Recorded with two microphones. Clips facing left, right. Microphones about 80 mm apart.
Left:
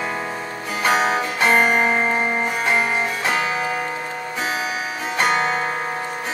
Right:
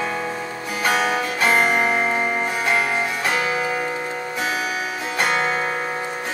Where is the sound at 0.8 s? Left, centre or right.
Left.